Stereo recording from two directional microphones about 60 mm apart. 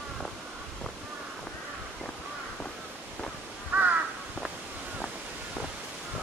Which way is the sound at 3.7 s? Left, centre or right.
Right.